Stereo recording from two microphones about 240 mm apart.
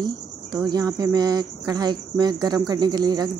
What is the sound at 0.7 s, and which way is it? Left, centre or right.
A woman's voice, centre.